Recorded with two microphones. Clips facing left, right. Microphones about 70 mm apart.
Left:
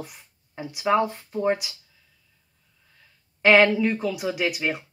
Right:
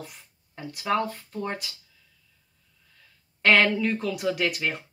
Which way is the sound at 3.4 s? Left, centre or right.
Centre.